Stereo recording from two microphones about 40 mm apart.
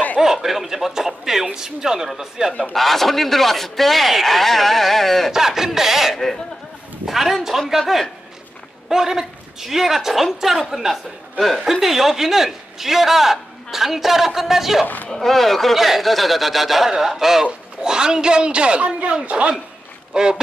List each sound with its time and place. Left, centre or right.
0.2 s a sound: centre
2.1 s a man's voice: centre
2.7 s a man's voice: centre
5.3 s a man's voice: centre
8.8 s a man's voice: centre
11.3 s speech: centre
11.8 s a man's voice: centre
15.1 s a man's voice: centre; by 20.3 s right